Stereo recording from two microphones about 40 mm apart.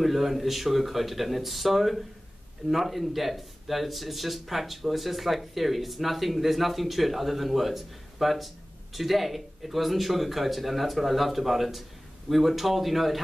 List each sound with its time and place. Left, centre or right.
0.0 s speech: centre